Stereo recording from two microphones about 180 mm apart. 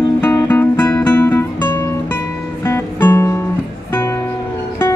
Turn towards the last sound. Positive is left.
turn(degrees=15)  # may be behind; listen again after turning